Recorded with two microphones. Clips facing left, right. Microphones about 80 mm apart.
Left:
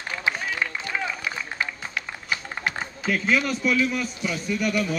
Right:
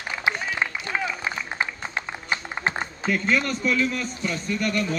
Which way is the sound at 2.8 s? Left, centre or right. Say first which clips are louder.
Right 1 dB; centre.